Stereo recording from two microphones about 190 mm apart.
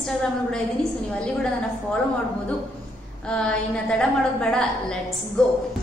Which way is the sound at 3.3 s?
5° left (ahead or behind).